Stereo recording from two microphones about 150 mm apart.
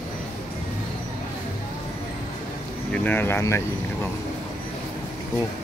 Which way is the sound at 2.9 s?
10° left (ahead or behind).